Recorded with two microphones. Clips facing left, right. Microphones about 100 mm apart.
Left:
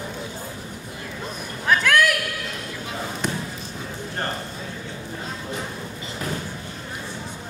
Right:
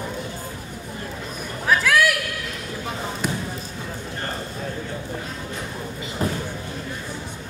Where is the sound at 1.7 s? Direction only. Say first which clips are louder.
Even; centre (ahead or behind).